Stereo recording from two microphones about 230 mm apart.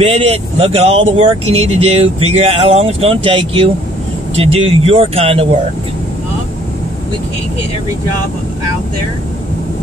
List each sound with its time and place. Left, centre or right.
0.0 s speech: right